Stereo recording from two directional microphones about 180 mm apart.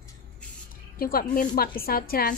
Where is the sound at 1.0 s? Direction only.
55° left (ahead or behind).